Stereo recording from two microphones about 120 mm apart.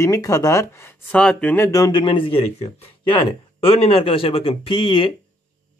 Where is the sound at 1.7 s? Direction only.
35° left (ahead or behind).